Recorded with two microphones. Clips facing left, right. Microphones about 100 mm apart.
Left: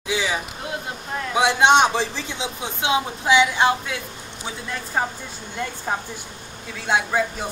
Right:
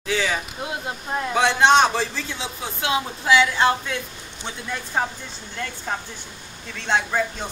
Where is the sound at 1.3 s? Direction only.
15° left (ahead or behind).